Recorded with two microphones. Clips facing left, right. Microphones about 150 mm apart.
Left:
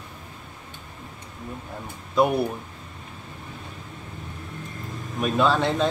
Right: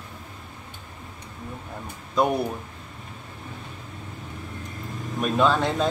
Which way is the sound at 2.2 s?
5° left (ahead or behind).